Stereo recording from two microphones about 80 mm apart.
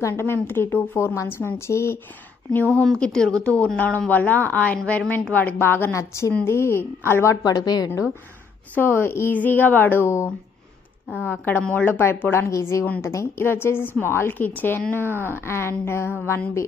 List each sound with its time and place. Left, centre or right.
0.0 s a woman's voice: left
2.5 s a woman's voice: centre
2.9 s a woman's voice: centre; by 7.3 s left
7.4 s a woman's voice: left
8.7 s a woman's voice: left
11.2 s a woman's voice: left
15.0 s speech: right
15.4 s speech: left